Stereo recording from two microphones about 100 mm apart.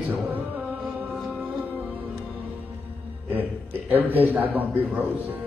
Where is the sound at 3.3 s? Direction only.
20° right (ahead or behind).